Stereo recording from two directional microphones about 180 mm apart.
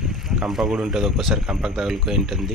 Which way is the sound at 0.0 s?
Centre (ahead or behind).